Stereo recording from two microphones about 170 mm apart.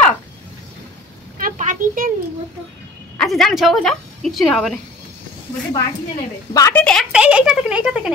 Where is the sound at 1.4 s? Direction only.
50° right (ahead or behind).